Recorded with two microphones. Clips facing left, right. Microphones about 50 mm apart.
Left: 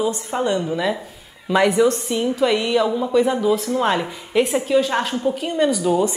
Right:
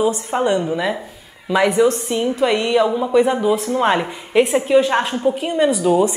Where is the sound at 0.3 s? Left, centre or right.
Centre.